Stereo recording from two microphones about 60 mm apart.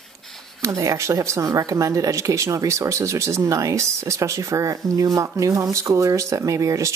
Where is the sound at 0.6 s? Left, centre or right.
Right.